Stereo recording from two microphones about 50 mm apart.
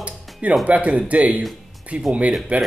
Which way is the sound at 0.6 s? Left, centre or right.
Right.